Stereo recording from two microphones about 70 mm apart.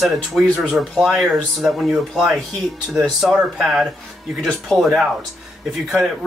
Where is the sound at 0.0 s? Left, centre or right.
Centre.